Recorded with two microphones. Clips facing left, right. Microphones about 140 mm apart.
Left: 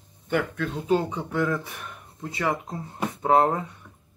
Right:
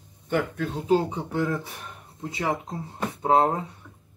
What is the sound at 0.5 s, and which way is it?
Speech, 35° right (ahead or behind).